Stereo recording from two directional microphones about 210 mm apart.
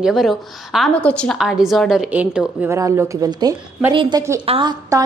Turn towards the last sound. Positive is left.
turn(degrees=-20)  # may be behind; listen again after turning